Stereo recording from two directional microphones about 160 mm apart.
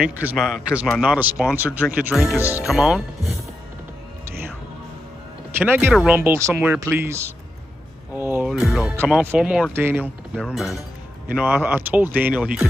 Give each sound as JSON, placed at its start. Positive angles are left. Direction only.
{"t": 0.0, "sound": "speech", "side_deg": -5}
{"t": 5.6, "sound": "speech", "side_deg": -10}
{"t": 8.1, "sound": "a sound", "side_deg": -10}
{"t": 8.5, "sound": "speech", "side_deg": 0}
{"t": 10.3, "sound": "speech", "side_deg": 0}